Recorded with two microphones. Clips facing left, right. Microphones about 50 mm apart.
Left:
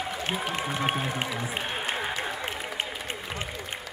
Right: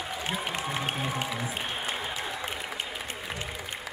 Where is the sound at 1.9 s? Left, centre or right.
Left.